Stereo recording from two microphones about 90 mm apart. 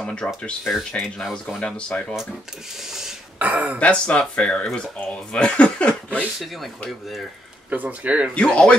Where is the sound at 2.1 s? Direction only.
5° right (ahead or behind).